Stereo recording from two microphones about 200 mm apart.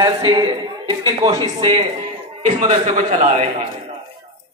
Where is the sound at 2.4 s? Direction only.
35° right (ahead or behind).